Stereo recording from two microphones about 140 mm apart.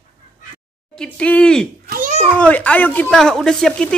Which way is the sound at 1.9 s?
80° right.